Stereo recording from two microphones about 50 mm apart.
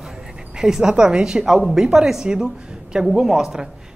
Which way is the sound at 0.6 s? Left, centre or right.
Centre.